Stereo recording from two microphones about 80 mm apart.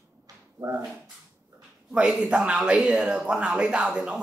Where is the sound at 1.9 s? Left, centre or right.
Centre.